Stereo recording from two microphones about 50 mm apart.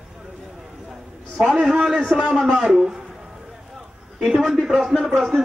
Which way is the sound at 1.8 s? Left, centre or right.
Right.